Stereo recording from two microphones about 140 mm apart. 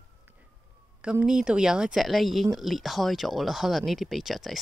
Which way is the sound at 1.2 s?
5° right (ahead or behind).